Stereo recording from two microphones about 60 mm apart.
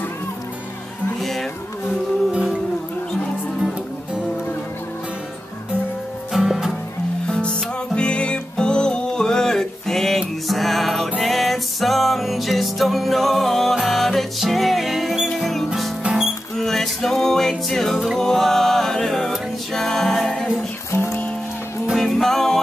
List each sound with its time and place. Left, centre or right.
1.2 s insect: centre
6.3 s music: centre
7.2 s music: centre
16.0 s music: centre
16.5 s music: centre
20.9 s music: left
21.9 s music: centre